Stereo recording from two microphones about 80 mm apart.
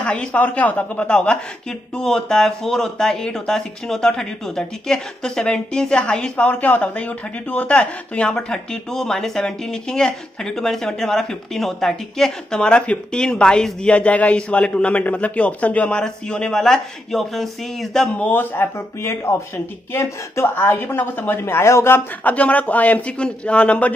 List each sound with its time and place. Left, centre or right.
0.0 s a woman's voice: centre
18.2 s speech: left